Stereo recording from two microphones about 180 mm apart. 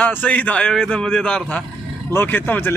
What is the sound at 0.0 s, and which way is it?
A man's voice, 10° left (ahead or behind).